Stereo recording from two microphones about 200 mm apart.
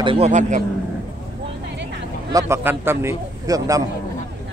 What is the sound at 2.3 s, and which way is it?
A man's voice, 15° right (ahead or behind).